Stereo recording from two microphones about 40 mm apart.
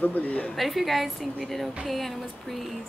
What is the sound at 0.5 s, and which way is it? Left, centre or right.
Music, centre.